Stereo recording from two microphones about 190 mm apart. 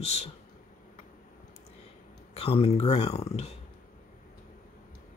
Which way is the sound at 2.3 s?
30° left (ahead or behind).